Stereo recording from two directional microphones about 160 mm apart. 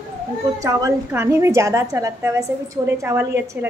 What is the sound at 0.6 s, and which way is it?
A woman's voice, 20° right (ahead or behind).